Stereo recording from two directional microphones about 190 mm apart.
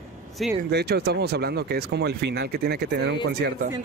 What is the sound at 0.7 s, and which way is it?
Speech, 60° right (ahead or behind).